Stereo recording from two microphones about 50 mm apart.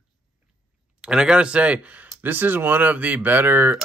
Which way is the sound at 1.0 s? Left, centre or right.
Centre.